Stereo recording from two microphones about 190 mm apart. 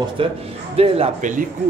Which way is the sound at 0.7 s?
30° right (ahead or behind).